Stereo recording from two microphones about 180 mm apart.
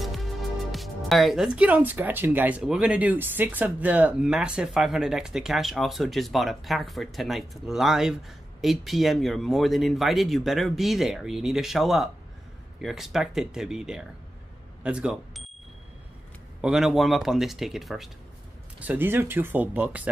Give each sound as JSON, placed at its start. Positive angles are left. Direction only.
{"t": 0.0, "sound": "speech", "side_deg": 0}
{"t": 16.6, "sound": "speech", "side_deg": 0}